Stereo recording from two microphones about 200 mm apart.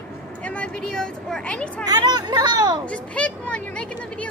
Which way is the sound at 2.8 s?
5° left (ahead or behind).